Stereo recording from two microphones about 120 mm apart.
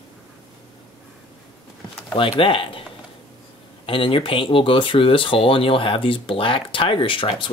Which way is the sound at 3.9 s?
45° left (ahead or behind).